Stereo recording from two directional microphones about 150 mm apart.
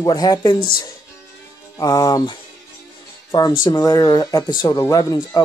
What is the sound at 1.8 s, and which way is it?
Speech, 25° left (ahead or behind).